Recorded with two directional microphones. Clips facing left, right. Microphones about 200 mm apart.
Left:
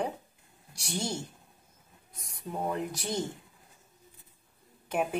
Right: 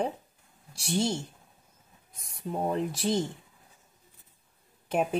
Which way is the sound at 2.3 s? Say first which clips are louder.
Right 3 dB; 25° right (ahead or behind).